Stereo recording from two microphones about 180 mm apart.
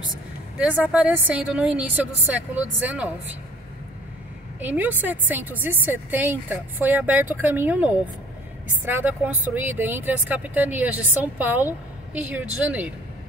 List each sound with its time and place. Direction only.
0.6 s speech: 5° right (ahead or behind)
4.6 s speech: 10° right (ahead or behind)
8.9 s speech: 10° right (ahead or behind)